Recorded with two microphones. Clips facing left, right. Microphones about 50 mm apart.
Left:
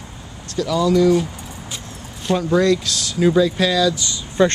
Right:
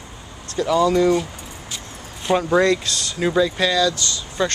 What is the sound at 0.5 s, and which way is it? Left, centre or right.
Speech, right.